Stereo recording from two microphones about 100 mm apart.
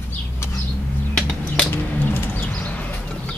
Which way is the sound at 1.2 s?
10° left (ahead or behind).